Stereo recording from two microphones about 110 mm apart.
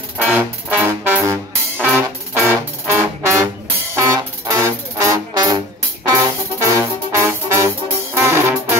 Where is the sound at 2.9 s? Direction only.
25° right (ahead or behind).